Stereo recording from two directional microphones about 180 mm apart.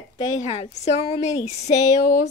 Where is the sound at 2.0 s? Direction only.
50° left (ahead or behind).